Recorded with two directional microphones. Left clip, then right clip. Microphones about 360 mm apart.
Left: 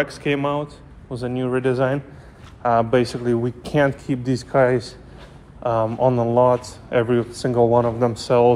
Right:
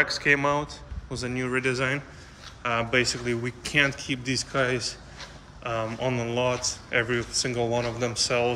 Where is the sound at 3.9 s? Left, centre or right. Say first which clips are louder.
Left 5 dB; left.